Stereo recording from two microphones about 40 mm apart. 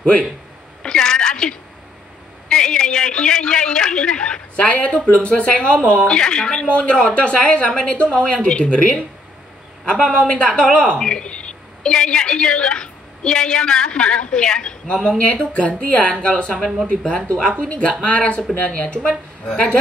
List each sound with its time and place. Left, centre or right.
0.8 s a sound: centre
2.5 s a man's voice: centre
4.6 s a woman's voice: left
11.0 s a woman's voice: centre